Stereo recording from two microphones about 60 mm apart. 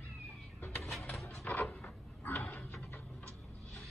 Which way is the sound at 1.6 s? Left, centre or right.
Centre.